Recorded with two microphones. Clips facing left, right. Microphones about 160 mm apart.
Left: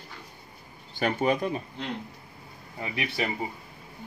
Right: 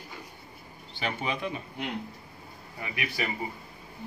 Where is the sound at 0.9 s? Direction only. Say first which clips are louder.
Left 7 dB; 45° left (ahead or behind).